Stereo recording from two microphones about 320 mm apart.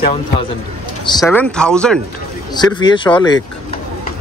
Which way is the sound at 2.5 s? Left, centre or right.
Centre.